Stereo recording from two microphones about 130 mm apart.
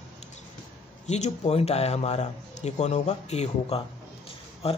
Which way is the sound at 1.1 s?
60° left (ahead or behind).